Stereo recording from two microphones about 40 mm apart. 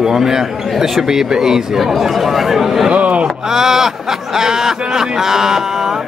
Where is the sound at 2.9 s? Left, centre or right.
Right.